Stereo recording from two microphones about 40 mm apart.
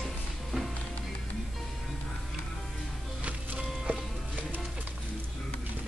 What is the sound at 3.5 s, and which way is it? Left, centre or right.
Music, centre.